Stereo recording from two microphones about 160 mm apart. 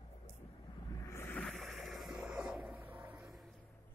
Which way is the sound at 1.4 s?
Centre (ahead or behind).